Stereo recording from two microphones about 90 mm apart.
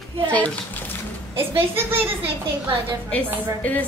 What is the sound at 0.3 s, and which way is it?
Speech, 15° left (ahead or behind).